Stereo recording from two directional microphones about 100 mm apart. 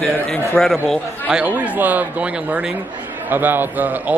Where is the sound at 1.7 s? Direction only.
15° right (ahead or behind).